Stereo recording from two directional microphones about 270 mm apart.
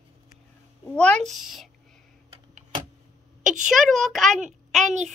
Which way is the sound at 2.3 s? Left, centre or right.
Right.